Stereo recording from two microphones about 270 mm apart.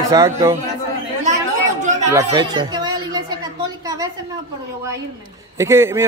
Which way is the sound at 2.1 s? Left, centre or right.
Centre.